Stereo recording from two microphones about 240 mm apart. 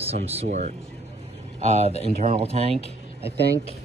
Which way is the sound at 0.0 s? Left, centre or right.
Right.